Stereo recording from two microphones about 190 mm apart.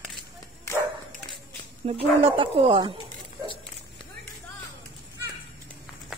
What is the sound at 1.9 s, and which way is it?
Speech, 30° right (ahead or behind).